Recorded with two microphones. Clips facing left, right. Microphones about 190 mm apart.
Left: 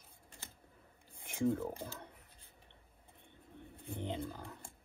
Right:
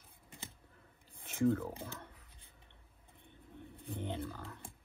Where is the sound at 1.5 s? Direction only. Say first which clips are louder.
Right 1 dB; 15° left (ahead or behind).